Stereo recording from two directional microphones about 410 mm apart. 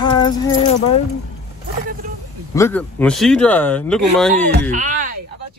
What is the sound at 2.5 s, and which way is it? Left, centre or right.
Speech, centre.